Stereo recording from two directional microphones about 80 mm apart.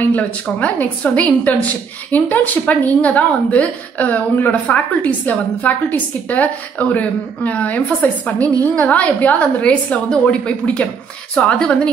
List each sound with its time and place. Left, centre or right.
0.0 s a woman's voice: centre